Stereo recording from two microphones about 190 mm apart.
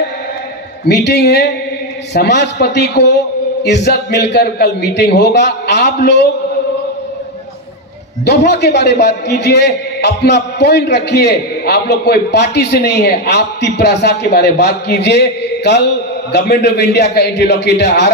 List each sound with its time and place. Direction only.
0.8 s a man's voice: 60° left (ahead or behind)
8.3 s a man's voice: 60° left (ahead or behind)